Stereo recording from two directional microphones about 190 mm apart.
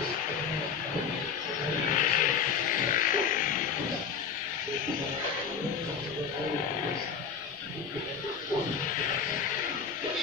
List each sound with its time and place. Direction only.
2.0 s vehicle: 45° left (ahead or behind)
2.9 s music: 45° left (ahead or behind)